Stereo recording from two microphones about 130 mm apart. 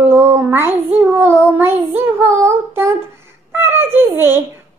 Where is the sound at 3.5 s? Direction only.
20° right (ahead or behind).